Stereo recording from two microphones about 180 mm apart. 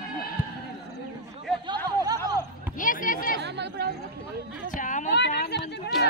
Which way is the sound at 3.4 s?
65° right (ahead or behind).